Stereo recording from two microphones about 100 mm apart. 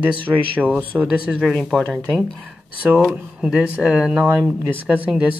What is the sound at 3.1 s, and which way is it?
Speech, 5° right (ahead or behind).